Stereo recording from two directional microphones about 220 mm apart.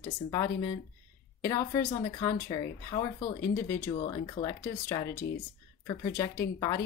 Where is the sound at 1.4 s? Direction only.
15° left (ahead or behind).